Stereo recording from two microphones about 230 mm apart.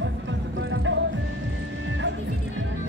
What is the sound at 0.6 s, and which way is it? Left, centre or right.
Music, right.